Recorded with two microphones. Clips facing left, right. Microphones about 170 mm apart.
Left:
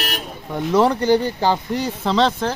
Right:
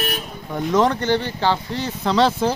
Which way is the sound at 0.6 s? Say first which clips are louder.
Left 2 dB; 5° left (ahead or behind).